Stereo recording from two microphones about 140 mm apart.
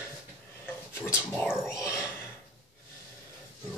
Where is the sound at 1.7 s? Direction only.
20° left (ahead or behind).